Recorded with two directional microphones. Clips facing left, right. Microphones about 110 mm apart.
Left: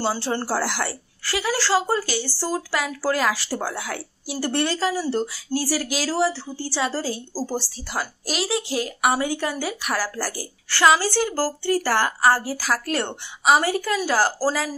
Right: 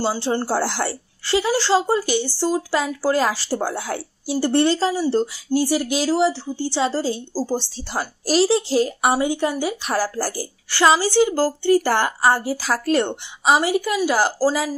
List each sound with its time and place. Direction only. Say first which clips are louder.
0.0 s speech: right 3 dB; 20° right (ahead or behind)
11.0 s speech: right 5 dB; 20° right (ahead or behind)